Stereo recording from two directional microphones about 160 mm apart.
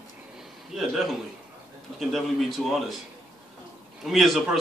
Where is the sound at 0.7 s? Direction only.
Centre (ahead or behind).